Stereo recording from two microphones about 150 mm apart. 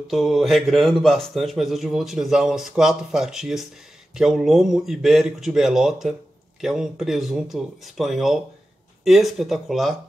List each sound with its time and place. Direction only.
0.1 s speech: centre (ahead or behind)